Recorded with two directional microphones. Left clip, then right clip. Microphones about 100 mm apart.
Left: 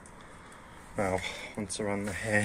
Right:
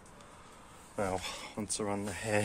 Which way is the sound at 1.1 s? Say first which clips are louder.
Left 4 dB; 50° right (ahead or behind).